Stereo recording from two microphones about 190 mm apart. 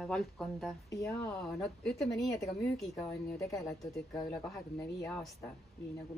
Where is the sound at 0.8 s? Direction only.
15° left (ahead or behind).